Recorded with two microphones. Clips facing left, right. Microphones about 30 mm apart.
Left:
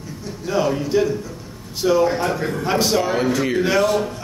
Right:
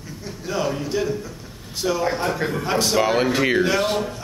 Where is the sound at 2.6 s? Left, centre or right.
Centre.